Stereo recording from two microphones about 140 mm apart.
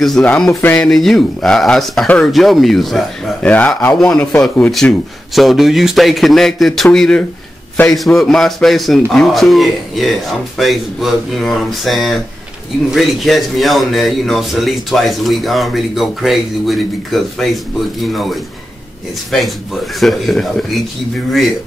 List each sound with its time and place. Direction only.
0.0 s a man's voice: 5° left (ahead or behind)
0.8 s a man's voice: 5° left (ahead or behind)